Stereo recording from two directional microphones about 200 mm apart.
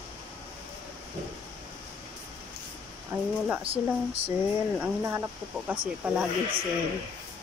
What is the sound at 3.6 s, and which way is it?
Speech, 30° right (ahead or behind).